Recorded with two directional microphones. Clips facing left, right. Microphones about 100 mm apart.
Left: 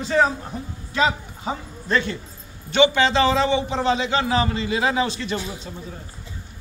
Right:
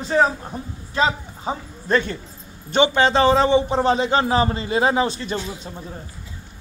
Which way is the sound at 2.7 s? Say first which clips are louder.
Right 1 dB; 40° right (ahead or behind).